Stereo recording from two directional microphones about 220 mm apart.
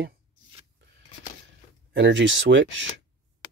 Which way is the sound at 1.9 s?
55° right (ahead or behind).